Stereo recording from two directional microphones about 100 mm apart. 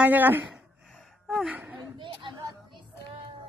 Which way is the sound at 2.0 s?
55° right (ahead or behind).